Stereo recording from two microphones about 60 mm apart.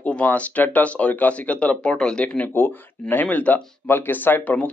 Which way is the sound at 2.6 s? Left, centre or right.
Left.